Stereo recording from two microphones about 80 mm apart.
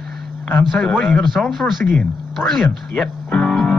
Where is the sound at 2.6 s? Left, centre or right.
Centre.